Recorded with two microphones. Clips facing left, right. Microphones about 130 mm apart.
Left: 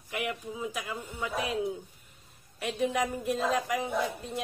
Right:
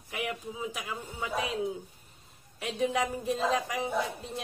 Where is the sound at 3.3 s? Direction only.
25° right (ahead or behind).